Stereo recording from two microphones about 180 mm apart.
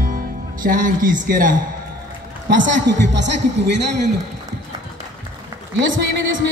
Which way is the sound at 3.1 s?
75° right (ahead or behind).